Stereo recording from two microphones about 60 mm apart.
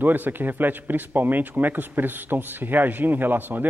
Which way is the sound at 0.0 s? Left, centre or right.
Right.